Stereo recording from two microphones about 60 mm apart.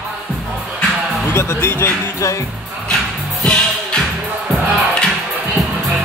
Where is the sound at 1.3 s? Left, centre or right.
Left.